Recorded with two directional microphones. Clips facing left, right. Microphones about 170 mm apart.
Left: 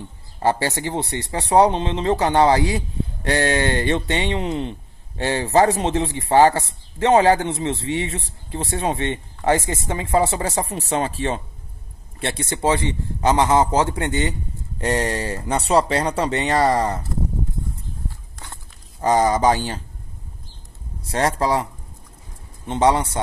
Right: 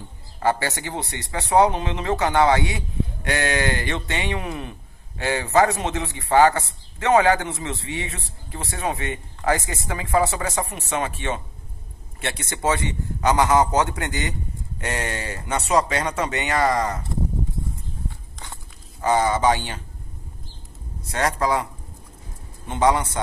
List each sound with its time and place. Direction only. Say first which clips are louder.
0.4 s speech: left 2 dB; 30° left (ahead or behind)
18.9 s speech: left 3 dB; 35° left (ahead or behind)
21.0 s speech: left 2 dB; 30° left (ahead or behind)
22.7 s speech: left 2 dB; 25° left (ahead or behind)